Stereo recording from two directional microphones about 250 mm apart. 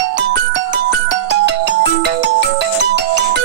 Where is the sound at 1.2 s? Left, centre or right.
Right.